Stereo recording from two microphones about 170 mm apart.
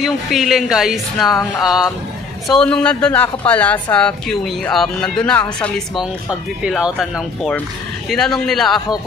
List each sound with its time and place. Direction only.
0.0 s speech: centre (ahead or behind)
2.4 s a woman's voice: 5° left (ahead or behind)
6.6 s speech: 5° right (ahead or behind)